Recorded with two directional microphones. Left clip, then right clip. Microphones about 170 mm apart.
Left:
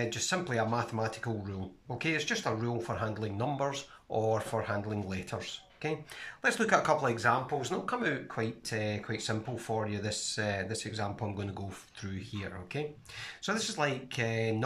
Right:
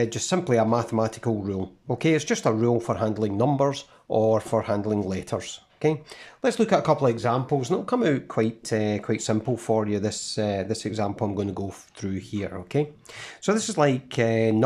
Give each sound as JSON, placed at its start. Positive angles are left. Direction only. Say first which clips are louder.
{"t": 0.0, "sound": "speech", "louder": "right 7 dB", "side_deg": -35}
{"t": 6.4, "sound": "speech", "louder": "right 6 dB", "side_deg": -25}